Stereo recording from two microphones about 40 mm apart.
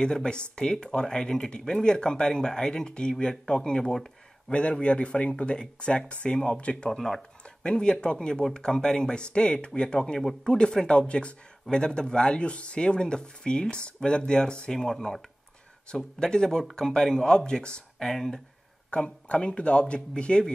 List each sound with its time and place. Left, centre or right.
0.0 s speech: left
4.5 s speech: left
7.0 s speech: centre
7.4 s speech: left
18.0 s speech: centre
18.9 s speech: left